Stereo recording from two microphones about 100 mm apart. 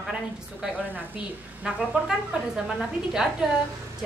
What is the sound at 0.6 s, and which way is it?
A woman's voice, 20° right (ahead or behind).